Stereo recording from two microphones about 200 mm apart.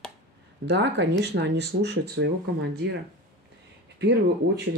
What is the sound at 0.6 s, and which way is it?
Speech, 60° right (ahead or behind).